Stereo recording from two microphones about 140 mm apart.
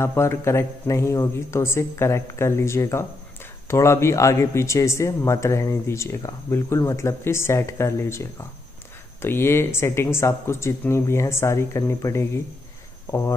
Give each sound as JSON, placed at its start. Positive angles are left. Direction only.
{"t": 0.0, "sound": "speech", "side_deg": 20}